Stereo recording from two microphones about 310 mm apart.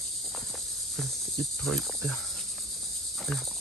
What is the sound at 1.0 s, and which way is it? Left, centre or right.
Cricket, centre.